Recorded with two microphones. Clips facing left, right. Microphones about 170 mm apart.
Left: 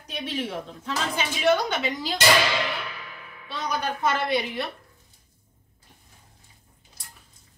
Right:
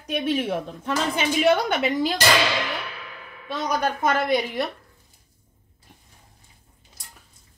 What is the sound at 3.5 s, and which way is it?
A woman's voice, 45° right (ahead or behind).